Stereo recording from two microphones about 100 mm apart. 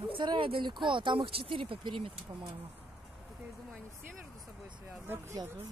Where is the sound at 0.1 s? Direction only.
55° right (ahead or behind).